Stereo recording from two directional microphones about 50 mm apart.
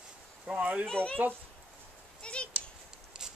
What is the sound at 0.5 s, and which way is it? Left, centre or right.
Speech, right.